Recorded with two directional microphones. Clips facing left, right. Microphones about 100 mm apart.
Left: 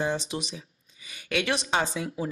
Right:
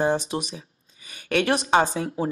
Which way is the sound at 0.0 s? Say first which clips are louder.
Right 6 dB; 45° right (ahead or behind).